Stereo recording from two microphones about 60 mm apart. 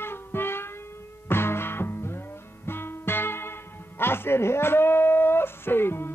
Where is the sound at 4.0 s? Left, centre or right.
Left.